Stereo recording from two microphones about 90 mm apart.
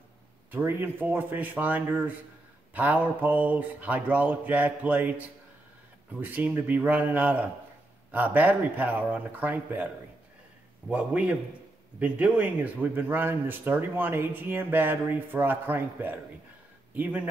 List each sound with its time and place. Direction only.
0.5 s speech: 20° right (ahead or behind)
2.7 s mantra: 20° right (ahead or behind)
6.2 s speech: 20° right (ahead or behind)
8.1 s mantra: 20° right (ahead or behind)
10.9 s mantra: 15° right (ahead or behind)
12.0 s speech: 15° right (ahead or behind)
16.9 s mantra: 15° right (ahead or behind)